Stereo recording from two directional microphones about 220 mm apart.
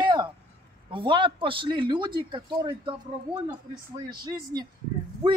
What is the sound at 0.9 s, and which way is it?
A man's voice, 20° right (ahead or behind).